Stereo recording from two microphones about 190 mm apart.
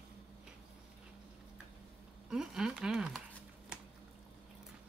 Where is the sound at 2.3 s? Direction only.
5° right (ahead or behind).